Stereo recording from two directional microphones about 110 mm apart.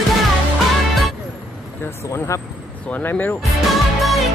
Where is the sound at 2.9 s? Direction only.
15° left (ahead or behind).